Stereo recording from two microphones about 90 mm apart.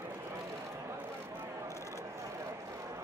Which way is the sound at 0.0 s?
30° right (ahead or behind).